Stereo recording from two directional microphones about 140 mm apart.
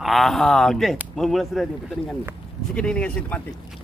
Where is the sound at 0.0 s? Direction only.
Centre (ahead or behind).